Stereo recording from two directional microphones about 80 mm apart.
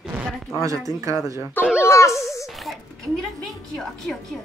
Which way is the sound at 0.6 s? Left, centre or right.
Right.